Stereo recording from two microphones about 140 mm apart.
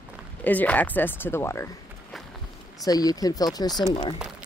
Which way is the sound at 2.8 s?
25° left (ahead or behind).